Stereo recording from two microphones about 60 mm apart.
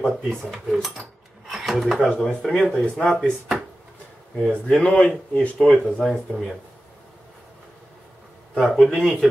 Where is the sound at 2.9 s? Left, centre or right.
Centre.